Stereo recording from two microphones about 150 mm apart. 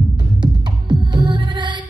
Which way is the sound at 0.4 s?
30° right (ahead or behind).